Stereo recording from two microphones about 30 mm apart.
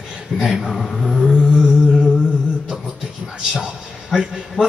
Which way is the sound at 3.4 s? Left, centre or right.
Right.